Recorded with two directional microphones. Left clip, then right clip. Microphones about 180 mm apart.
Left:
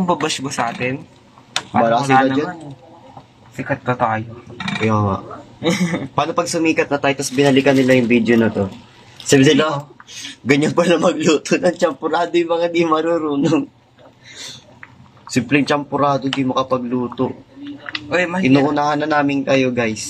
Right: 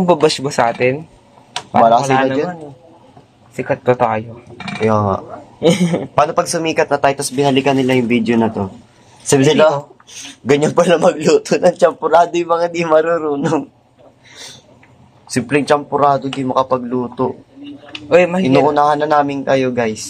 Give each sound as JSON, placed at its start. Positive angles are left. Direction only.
{"t": 0.0, "sound": "speech", "side_deg": -25}
{"t": 1.9, "sound": "speech", "side_deg": -20}
{"t": 3.6, "sound": "speech", "side_deg": -35}
{"t": 4.7, "sound": "speech", "side_deg": -20}
{"t": 5.1, "sound": "a man's voice", "side_deg": -30}
{"t": 15.3, "sound": "a man's voice", "side_deg": -15}
{"t": 18.1, "sound": "speech", "side_deg": -35}
{"t": 18.7, "sound": "a man's voice", "side_deg": -15}